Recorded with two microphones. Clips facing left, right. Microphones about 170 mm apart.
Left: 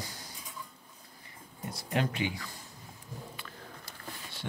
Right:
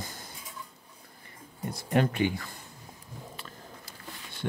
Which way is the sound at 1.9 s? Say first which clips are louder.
Right 6 dB; 50° right (ahead or behind).